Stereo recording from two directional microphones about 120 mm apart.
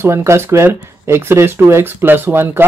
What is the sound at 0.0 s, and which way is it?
A man's voice, 20° right (ahead or behind).